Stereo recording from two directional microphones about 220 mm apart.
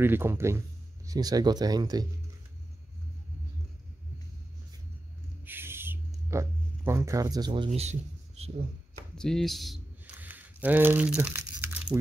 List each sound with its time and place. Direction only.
0.0 s speech: 10° right (ahead or behind)
5.4 s music: 10° right (ahead or behind); by 8.5 s 30° right (ahead or behind)
9.1 s a sound: 5° left (ahead or behind)